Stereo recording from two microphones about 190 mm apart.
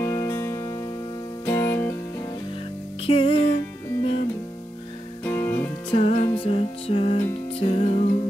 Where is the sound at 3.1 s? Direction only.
30° left (ahead or behind).